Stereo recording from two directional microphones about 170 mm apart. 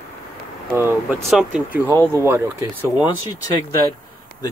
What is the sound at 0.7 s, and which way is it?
Speech, 15° right (ahead or behind).